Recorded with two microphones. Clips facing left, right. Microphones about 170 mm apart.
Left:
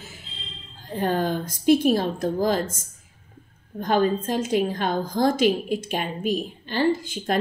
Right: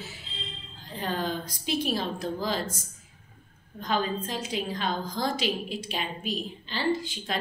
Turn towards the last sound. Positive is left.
turn(degrees=50)  # may be behind; listen again after turning